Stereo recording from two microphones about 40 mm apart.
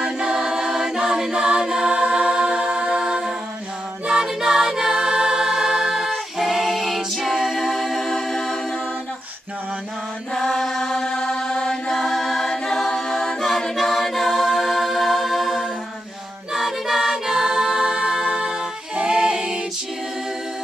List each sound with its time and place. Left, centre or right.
0.0 s a capella: centre
4.1 s music: centre
7.3 s a capella: centre
7.6 s music: centre
10.3 s chant: centre
13.4 s a capella: centre